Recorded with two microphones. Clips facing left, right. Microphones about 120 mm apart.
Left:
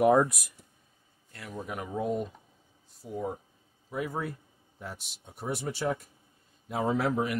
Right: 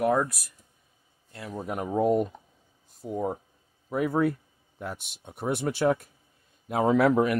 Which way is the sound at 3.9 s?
60° right (ahead or behind).